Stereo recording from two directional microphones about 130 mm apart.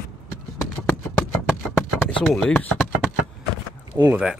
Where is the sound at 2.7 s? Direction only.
5° right (ahead or behind).